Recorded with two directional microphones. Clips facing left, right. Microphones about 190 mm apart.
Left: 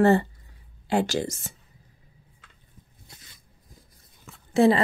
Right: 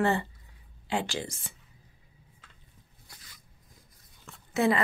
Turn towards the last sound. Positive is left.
turn(degrees=30)  # may be behind; listen again after turning